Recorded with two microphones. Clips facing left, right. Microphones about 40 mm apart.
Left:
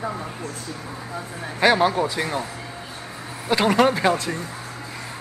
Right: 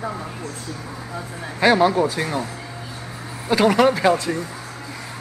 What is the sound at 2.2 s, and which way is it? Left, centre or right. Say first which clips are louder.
Speech: right 1 dB; centre.